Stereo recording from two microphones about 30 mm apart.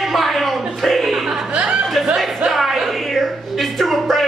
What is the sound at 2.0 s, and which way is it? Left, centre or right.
Music, centre.